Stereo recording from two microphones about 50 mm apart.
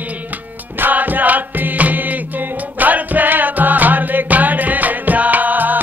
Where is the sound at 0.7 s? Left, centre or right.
Right.